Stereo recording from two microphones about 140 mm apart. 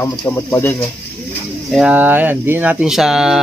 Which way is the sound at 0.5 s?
15° left (ahead or behind).